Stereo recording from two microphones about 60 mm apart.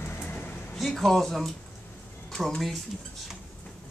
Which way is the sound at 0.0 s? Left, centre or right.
Left.